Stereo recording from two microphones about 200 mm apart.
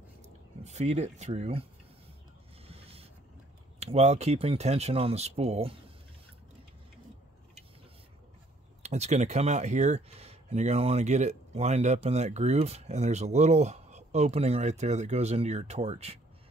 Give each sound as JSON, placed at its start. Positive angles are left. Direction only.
{"t": 0.7, "sound": "speech", "side_deg": -35}
{"t": 2.6, "sound": "a sound", "side_deg": -30}
{"t": 3.8, "sound": "speech", "side_deg": -35}
{"t": 8.8, "sound": "speech", "side_deg": -35}